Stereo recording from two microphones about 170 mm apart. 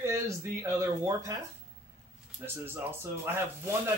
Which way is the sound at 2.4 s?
15° right (ahead or behind).